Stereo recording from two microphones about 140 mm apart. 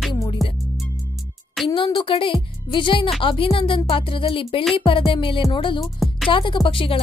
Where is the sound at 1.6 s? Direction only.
35° left (ahead or behind).